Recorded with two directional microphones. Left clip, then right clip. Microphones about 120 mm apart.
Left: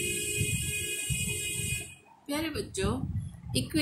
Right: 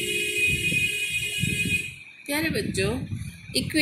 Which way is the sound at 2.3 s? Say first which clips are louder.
Right 7 dB; 30° right (ahead or behind).